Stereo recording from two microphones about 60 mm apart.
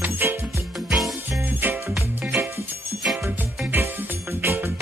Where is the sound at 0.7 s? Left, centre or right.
Centre.